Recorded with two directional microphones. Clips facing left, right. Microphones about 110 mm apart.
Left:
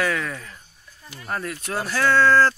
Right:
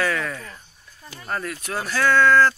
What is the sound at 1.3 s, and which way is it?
Speech, 25° left (ahead or behind).